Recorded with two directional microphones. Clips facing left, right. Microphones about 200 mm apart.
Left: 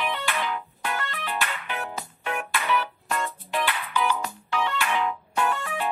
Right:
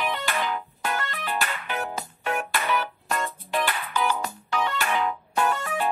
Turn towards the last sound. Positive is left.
turn(degrees=-40)  # may be behind; listen again after turning